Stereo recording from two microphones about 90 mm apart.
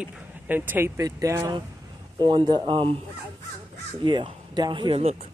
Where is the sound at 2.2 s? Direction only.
55° right (ahead or behind); by 2.9 s 70° right (ahead or behind).